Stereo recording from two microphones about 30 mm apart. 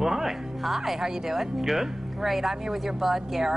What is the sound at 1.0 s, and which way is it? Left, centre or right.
Speech, centre.